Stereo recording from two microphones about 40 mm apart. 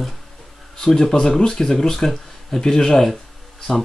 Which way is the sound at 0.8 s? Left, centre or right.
Centre.